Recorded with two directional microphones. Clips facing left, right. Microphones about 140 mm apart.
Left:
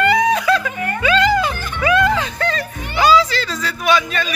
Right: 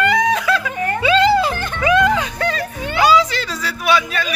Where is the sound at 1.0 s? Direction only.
30° right (ahead or behind).